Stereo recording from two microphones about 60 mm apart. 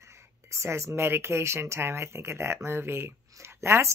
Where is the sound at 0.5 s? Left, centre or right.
Right.